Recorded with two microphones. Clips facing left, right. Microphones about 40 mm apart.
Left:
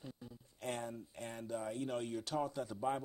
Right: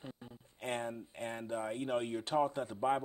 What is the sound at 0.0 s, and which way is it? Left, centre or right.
Speech, right.